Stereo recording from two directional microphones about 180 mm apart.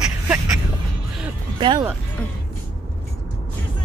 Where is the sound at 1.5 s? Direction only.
25° right (ahead or behind).